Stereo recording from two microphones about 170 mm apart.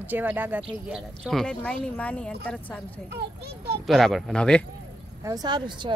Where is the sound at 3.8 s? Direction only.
Centre (ahead or behind).